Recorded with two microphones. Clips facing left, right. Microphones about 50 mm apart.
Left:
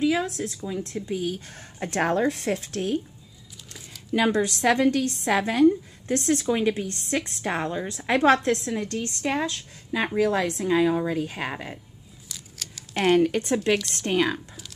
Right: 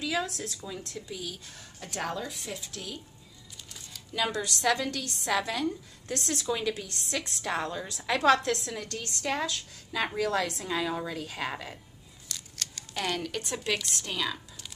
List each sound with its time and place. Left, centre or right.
0.0 s a woman's voice: left
4.1 s a woman's voice: left
12.3 s a sound: centre
13.1 s speech: left